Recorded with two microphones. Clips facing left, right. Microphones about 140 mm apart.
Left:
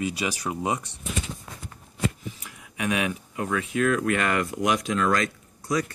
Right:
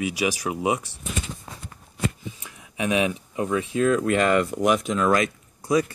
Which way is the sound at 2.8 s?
20° right (ahead or behind).